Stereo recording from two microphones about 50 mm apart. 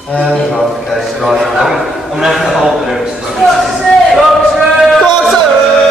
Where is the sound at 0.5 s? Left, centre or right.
Centre.